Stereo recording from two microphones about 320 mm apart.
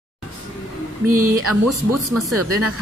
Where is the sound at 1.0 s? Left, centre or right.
Right.